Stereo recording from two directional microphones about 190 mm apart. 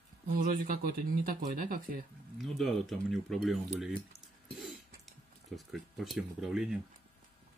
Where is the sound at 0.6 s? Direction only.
50° right (ahead or behind).